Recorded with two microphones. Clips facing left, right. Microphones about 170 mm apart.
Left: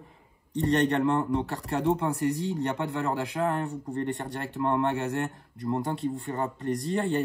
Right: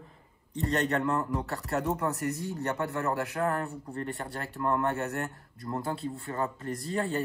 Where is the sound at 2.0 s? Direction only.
20° left (ahead or behind).